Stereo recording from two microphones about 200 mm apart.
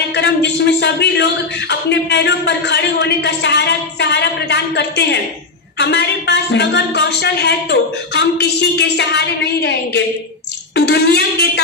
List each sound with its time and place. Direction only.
0.1 s speech: 60° left (ahead or behind)